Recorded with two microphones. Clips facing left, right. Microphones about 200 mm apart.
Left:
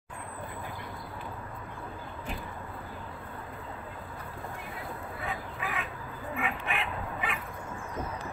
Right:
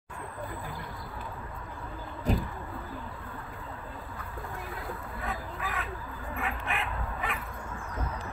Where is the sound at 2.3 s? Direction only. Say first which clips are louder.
Right 11 dB; 40° right (ahead or behind).